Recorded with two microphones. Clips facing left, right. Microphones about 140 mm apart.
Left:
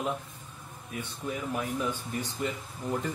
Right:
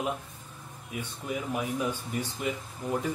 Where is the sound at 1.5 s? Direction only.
10° right (ahead or behind).